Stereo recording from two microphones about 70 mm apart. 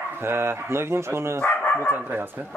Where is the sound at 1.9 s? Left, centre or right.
Right.